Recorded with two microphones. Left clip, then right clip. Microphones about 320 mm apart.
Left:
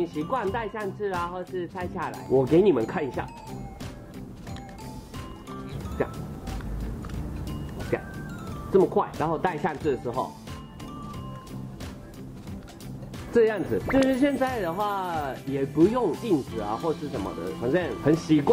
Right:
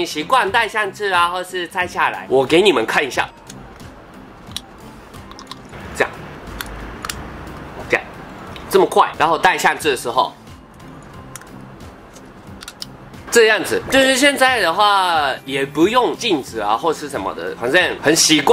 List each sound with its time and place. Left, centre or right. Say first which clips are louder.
0.0 s speech: right 11 dB; centre
6.6 s biting: right 11 dB; centre
8.9 s speech: right 12 dB; centre
10.0 s speech: right 12 dB; right
13.3 s speech: right 10 dB; centre